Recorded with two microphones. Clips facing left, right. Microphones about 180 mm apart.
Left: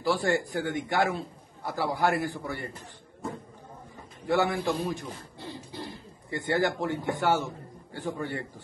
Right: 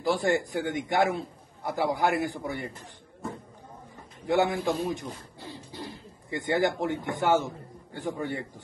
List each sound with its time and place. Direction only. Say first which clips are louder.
0.0 s a man's voice: right 1 dB; 20° right (ahead or behind)
4.3 s a man's voice: right 1 dB; 20° right (ahead or behind)
6.3 s a man's voice: right 1 dB; 20° right (ahead or behind)